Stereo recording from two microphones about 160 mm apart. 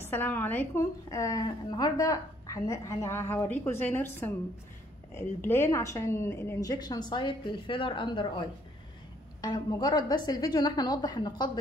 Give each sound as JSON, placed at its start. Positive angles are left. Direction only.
{"t": 0.0, "sound": "a woman's voice", "side_deg": 15}